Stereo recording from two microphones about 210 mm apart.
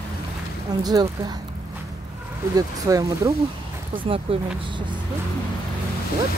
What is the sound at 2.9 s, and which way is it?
Speech, 15° right (ahead or behind).